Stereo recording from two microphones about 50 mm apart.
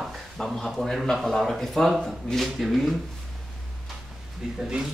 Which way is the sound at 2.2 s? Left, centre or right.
Centre.